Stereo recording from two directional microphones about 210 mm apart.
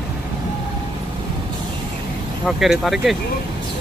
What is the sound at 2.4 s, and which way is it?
Speech, centre (ahead or behind).